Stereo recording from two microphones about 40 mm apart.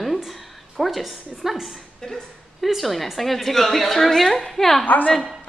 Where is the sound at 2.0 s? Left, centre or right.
Centre.